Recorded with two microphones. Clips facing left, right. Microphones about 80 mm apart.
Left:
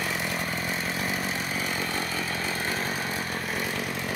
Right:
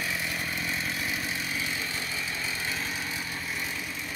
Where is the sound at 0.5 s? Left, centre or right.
Left.